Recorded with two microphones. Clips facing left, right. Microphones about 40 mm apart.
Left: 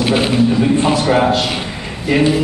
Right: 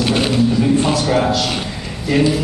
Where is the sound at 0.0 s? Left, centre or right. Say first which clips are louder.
Left 2 dB; centre.